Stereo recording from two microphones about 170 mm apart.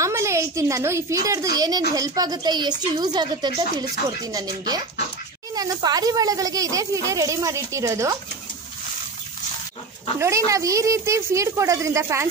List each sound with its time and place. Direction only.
0.0 s a woman's voice: 15° right (ahead or behind)
10.1 s a woman's voice: 15° right (ahead or behind)